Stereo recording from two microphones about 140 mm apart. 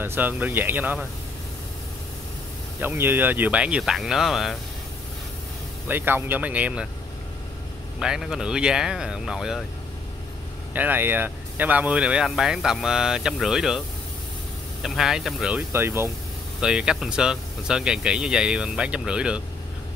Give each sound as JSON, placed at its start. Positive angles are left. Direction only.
{"t": 0.0, "sound": "speech", "side_deg": -15}
{"t": 2.8, "sound": "speech", "side_deg": -15}
{"t": 5.9, "sound": "speech", "side_deg": -15}
{"t": 8.0, "sound": "speech", "side_deg": -5}
{"t": 10.7, "sound": "speech", "side_deg": -15}
{"t": 15.7, "sound": "speech", "side_deg": -20}
{"t": 16.6, "sound": "speech", "side_deg": -5}